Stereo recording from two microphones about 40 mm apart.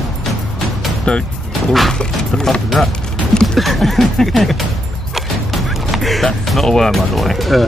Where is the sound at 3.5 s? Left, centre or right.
Centre.